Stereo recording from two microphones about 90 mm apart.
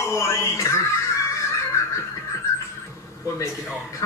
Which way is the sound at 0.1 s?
30° left (ahead or behind).